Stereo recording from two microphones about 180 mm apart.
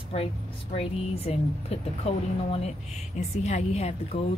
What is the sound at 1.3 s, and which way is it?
Speech, 35° left (ahead or behind).